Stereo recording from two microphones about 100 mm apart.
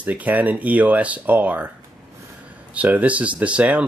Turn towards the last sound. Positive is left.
turn(degrees=-15)  # may be behind; listen again after turning